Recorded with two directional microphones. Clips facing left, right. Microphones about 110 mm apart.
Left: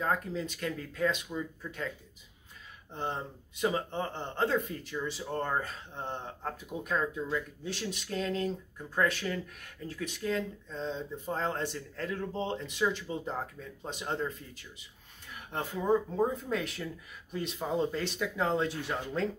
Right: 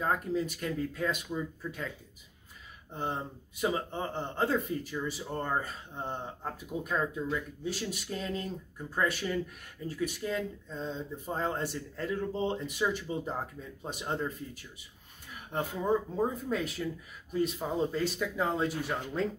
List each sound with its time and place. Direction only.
0.0 s speech: 10° right (ahead or behind)
2.9 s speech: 10° right (ahead or behind)
15.5 s speech: 5° right (ahead or behind)